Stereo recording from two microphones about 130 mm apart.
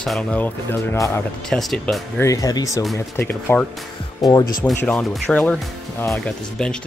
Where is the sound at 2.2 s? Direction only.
25° left (ahead or behind).